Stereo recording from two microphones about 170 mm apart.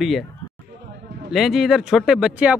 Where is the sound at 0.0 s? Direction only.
Centre (ahead or behind).